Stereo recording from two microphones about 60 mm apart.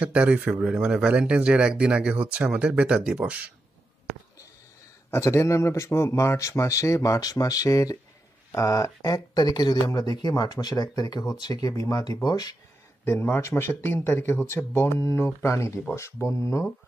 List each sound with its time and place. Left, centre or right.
0.0 s a man's voice: right
5.1 s a man's voice: left
5.9 s speech: left
8.5 s speech: left
13.0 s a man's voice: left